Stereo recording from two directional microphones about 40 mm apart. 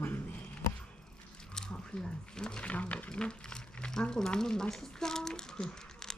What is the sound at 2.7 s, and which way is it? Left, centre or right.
Speech, left.